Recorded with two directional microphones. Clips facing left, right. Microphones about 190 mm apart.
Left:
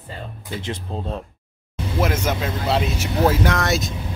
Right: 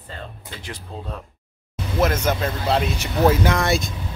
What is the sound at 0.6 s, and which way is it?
Speech, 25° left (ahead or behind).